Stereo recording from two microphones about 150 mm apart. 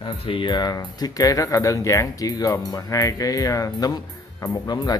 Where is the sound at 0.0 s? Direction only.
35° left (ahead or behind).